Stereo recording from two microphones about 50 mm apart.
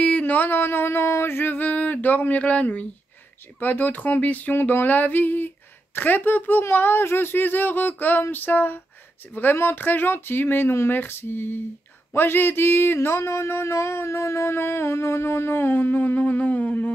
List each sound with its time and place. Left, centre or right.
0.0 s a sound: left
3.5 s speech: left
6.7 s music: left
13.5 s music: left